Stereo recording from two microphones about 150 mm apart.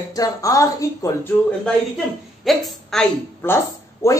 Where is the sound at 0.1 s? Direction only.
25° left (ahead or behind).